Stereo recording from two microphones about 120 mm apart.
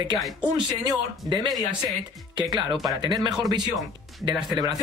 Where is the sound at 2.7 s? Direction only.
Centre (ahead or behind).